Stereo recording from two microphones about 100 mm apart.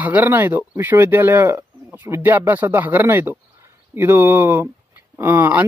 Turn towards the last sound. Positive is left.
turn(degrees=-20)  # may be behind; listen again after turning